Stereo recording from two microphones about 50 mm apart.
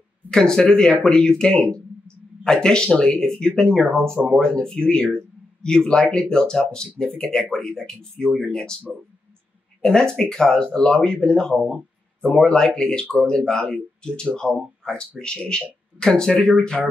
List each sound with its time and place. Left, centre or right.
0.3 s speech: centre
8.9 s speech: centre
9.8 s speech: centre